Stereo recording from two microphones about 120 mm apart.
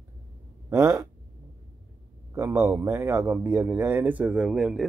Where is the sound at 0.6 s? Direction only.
25° right (ahead or behind).